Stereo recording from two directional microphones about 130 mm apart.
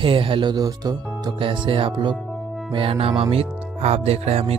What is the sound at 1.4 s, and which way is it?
Speech, 40° right (ahead or behind).